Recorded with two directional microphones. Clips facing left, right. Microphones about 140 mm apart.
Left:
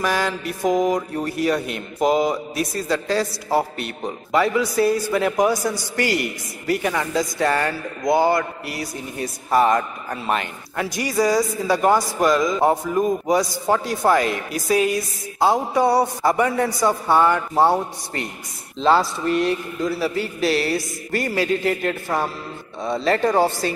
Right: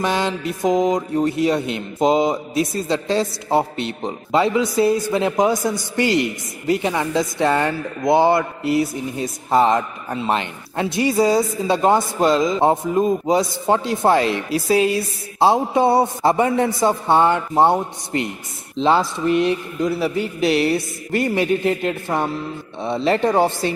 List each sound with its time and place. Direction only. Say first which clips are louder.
0.0 s speech: right 2 dB; 25° right (ahead or behind)